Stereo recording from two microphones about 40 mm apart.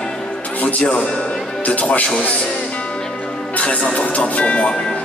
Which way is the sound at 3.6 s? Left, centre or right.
Left.